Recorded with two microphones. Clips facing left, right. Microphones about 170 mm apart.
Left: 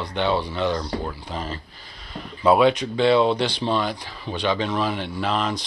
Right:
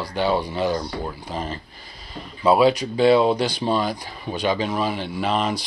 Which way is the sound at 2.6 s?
35° right (ahead or behind).